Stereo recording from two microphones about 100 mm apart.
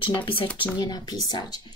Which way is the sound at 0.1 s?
60° left (ahead or behind).